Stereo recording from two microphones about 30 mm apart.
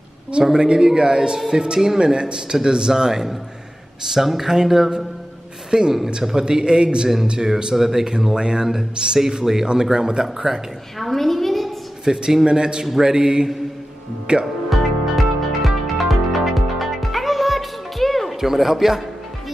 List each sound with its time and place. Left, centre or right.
0.4 s a man's voice: right
5.7 s a man's voice: right
8.4 s a man's voice: right
8.6 s speech: centre
9.9 s a man's voice: right
11.0 s a woman's voice: centre
12.1 s a man's voice: right
14.3 s a man's voice: right
14.7 s music: centre
18.4 s speech: centre